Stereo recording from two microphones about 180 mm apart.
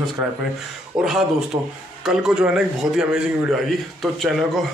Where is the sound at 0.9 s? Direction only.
5° right (ahead or behind).